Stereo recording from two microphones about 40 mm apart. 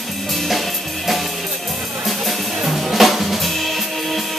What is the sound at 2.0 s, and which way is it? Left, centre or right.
Music, centre.